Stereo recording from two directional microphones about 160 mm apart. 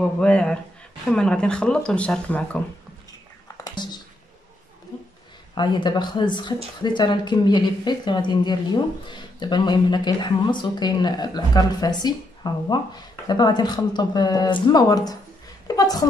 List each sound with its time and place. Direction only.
0.2 s speech: 5° left (ahead or behind)
3.5 s whispering: 25° left (ahead or behind)
5.5 s speech: 30° left (ahead or behind)